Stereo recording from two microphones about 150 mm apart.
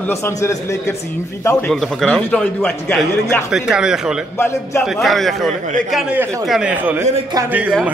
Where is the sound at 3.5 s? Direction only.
5° right (ahead or behind).